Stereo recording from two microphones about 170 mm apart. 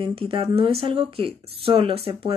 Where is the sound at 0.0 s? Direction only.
30° right (ahead or behind).